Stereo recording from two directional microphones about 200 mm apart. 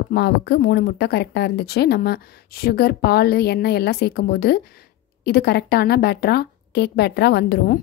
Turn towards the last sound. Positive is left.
turn(degrees=55)  # may be behind; listen again after turning